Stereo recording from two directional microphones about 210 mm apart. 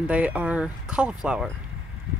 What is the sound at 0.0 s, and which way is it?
Speech, 5° right (ahead or behind).